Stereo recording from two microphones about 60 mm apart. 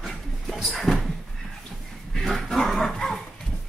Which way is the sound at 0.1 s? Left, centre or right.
Centre.